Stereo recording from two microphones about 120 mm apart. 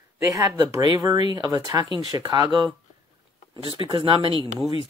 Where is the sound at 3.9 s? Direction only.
45° right (ahead or behind).